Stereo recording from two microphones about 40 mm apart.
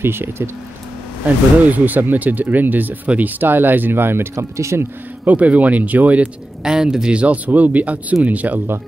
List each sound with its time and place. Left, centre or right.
0.0 s speech: right
1.2 s speech: right
4.7 s speech: right
5.2 s speech: right
6.6 s speech: centre
7.2 s speech: right